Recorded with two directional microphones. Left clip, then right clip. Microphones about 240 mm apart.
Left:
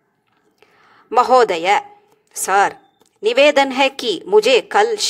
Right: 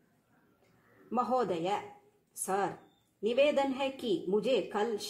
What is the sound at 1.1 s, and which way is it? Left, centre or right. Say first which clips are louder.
A woman's voice: left 18 dB; left.